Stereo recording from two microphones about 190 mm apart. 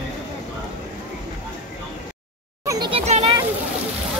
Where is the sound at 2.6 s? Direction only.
25° right (ahead or behind).